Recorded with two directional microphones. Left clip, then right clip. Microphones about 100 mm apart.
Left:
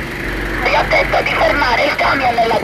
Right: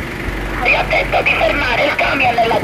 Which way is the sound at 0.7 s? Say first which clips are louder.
Left 2 dB; 90° left.